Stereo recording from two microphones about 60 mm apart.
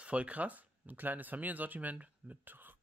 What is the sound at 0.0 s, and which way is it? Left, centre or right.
Speech, centre.